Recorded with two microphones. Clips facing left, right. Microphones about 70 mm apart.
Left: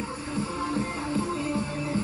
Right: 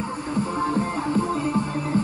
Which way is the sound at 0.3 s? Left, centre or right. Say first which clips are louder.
Right 6 dB; right.